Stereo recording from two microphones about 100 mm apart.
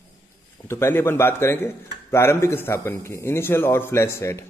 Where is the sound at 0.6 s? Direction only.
25° left (ahead or behind).